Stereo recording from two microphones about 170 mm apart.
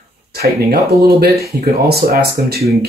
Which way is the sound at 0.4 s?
65° right (ahead or behind).